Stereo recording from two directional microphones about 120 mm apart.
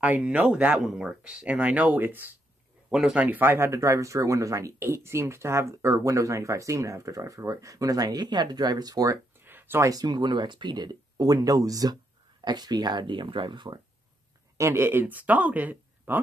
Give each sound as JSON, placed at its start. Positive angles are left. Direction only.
{"t": 0.0, "sound": "speech", "side_deg": -10}
{"t": 9.4, "sound": "speech", "side_deg": -15}
{"t": 14.6, "sound": "speech", "side_deg": -20}